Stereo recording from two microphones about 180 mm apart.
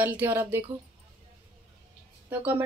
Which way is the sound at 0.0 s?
10° right (ahead or behind).